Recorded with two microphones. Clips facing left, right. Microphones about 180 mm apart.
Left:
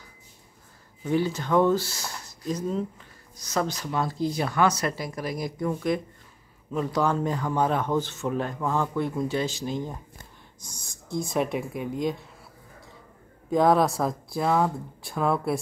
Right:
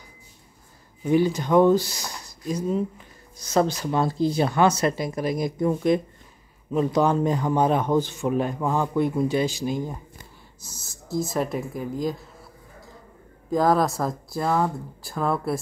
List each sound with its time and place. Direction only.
1.0 s speech: 15° right (ahead or behind)
3.3 s speech: 30° right (ahead or behind); by 12.3 s centre (ahead or behind)
13.5 s speech: centre (ahead or behind)